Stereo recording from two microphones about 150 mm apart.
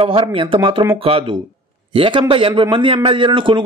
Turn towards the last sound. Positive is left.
turn(degrees=-30)  # may be behind; listen again after turning